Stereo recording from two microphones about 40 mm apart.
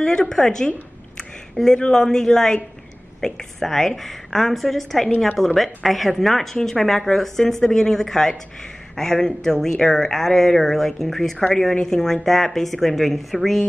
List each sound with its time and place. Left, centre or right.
0.0 s speech: centre
1.6 s speech: centre
1.9 s speech: centre